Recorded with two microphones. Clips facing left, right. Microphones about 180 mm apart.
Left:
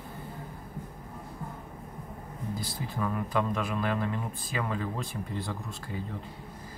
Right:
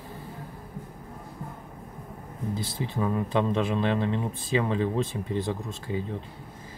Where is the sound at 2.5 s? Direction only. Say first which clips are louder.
Right 4 dB; 25° right (ahead or behind).